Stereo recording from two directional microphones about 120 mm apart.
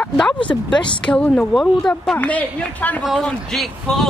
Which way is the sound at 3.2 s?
Centre (ahead or behind).